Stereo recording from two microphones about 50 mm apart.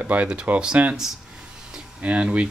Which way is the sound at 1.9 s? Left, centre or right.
Right.